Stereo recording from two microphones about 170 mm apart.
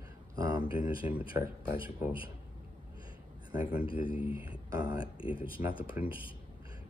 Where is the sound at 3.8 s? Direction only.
30° left (ahead or behind).